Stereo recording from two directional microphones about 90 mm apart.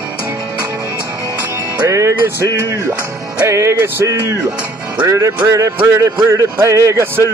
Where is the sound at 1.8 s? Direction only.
35° right (ahead or behind).